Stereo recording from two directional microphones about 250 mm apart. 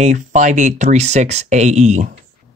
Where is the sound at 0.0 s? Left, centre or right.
Right.